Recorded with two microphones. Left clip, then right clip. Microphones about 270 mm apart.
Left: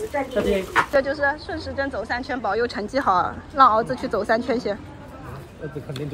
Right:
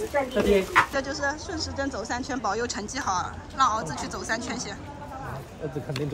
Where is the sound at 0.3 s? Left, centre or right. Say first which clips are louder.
Even; centre.